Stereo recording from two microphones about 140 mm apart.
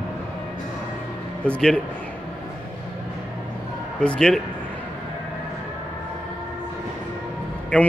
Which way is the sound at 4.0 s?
5° left (ahead or behind).